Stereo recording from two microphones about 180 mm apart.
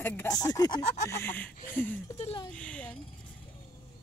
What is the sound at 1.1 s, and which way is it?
Speech, 10° left (ahead or behind).